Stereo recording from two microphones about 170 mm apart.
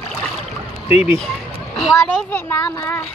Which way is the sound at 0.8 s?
30° left (ahead or behind).